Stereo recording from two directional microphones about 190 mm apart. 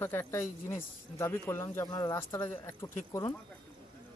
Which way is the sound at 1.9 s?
25° left (ahead or behind).